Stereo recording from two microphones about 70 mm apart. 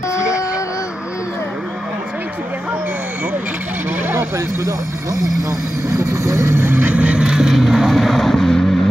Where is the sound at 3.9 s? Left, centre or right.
Right.